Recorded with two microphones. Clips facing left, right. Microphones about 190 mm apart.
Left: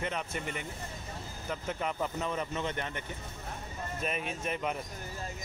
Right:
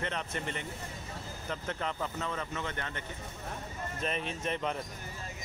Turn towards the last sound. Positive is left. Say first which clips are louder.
# even
turn(degrees=5)  # may be behind; listen again after turning